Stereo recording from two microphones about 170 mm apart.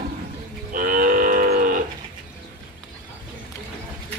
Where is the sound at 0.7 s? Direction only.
55° right (ahead or behind).